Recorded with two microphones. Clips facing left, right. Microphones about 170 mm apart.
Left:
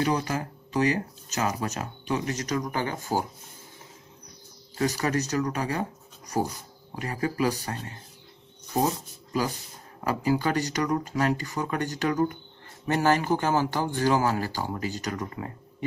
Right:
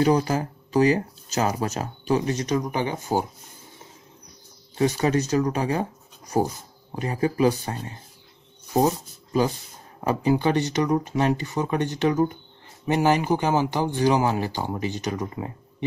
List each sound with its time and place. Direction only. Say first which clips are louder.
0.0 s speech: right 6 dB; 30° right (ahead or behind)
4.7 s speech: right 5 dB; 20° right (ahead or behind)
7.0 s speech: right 5 dB; 25° right (ahead or behind)